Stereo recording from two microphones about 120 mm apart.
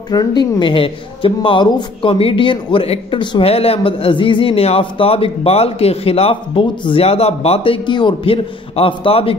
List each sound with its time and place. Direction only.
0.1 s a woman's voice: 35° left (ahead or behind)